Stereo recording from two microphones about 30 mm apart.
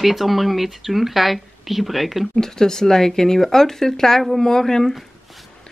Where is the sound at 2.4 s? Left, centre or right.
Centre.